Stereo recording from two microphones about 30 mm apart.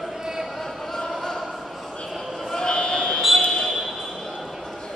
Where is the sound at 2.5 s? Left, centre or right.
Left.